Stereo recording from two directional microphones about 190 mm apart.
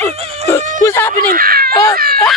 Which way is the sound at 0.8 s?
10° left (ahead or behind).